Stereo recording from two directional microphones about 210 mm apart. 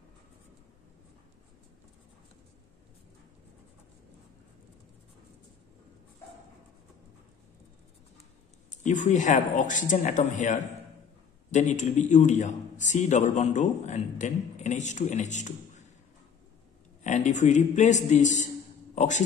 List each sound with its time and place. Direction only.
8.6 s a man's voice: 35° left (ahead or behind)
17.0 s a man's voice: 35° left (ahead or behind)